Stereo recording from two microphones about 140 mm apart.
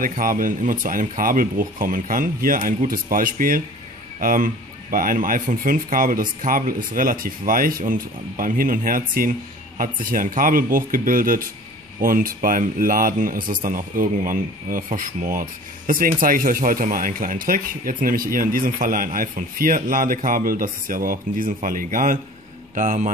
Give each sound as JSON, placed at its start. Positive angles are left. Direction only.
{"t": 0.0, "sound": "speech", "side_deg": -75}